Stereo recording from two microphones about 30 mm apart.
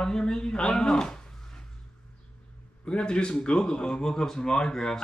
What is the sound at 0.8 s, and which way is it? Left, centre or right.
Speech, centre.